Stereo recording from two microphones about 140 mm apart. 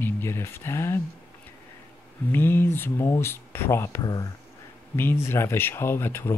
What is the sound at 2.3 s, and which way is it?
Speech, 15° left (ahead or behind).